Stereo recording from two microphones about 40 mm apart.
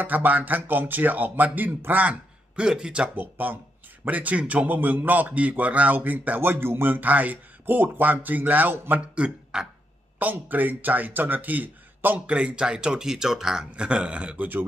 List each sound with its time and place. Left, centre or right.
0.0 s speech: right
2.5 s a man's voice: right
3.2 s speech: right
4.7 s speech: right
6.9 s speech: right
7.6 s speech: right
9.1 s speech: right
10.1 s speech: right
12.3 s a man's voice: right; by 13.7 s centre
13.7 s a man's voice: right